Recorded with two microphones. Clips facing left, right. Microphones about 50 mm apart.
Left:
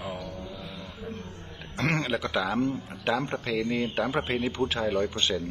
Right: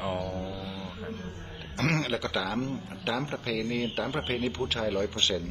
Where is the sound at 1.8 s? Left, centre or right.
Left.